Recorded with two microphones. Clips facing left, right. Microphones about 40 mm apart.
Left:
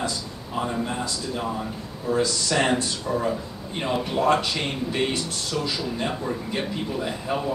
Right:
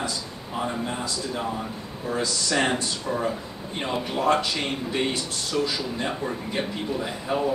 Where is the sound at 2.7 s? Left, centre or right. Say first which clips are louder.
Left 2 dB; centre.